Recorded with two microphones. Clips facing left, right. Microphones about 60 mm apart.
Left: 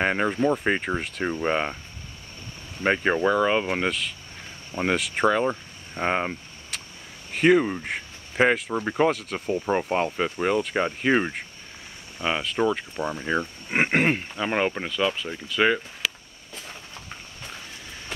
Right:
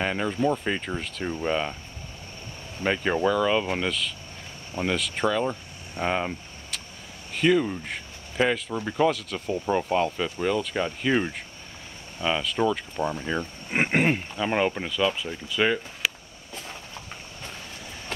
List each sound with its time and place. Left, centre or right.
0.0 s speech: left
2.8 s speech: left
7.3 s speech: left
12.9 s speech: centre